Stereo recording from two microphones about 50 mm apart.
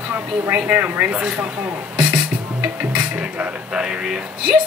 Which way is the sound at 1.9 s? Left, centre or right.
Right.